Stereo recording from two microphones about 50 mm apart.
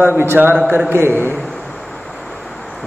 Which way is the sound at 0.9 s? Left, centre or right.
Right.